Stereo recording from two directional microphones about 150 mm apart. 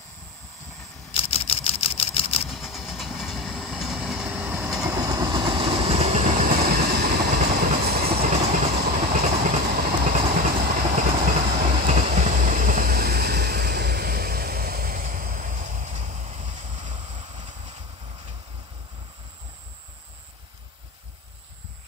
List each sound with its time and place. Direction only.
1.1 s camera: 40° left (ahead or behind)
2.4 s train: centre (ahead or behind)
4.8 s vehicle: 25° right (ahead or behind); by 7.2 s 90° right
7.3 s train: 80° right
8.3 s train: 65° right (ahead or behind)
9.2 s train: 55° right (ahead or behind)